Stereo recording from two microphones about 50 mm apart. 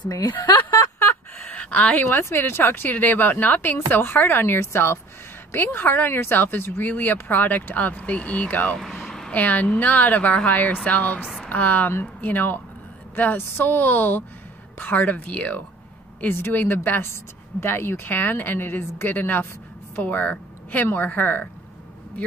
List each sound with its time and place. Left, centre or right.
0.6 s a sound: left
2.0 s speech: left
3.7 s speech: left
5.5 s speech: left
8.7 s vehicle: centre
9.3 s speech: left
16.3 s speech: left